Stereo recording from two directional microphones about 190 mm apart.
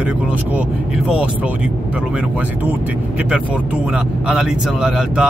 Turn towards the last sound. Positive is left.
turn(degrees=-5)  # may be behind; listen again after turning